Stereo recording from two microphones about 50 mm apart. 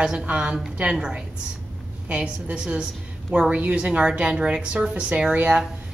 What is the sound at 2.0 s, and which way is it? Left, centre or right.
A woman's voice, right.